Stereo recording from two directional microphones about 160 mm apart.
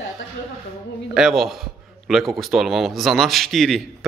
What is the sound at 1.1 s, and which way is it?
Speech, 5° right (ahead or behind).